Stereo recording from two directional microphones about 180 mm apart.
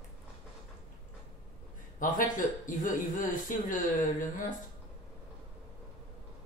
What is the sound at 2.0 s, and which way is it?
Speech, 45° left (ahead or behind).